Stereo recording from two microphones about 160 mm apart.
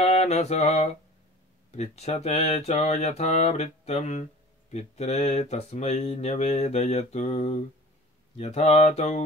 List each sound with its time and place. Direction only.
0.0 s mantra: 45° left (ahead or behind)
1.7 s speech: 40° left (ahead or behind)